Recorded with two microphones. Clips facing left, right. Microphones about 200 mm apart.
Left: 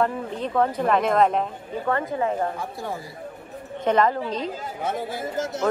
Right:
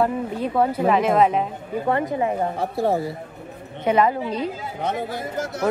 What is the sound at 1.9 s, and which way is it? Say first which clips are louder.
Speech: right 2 dB; 20° right (ahead or behind).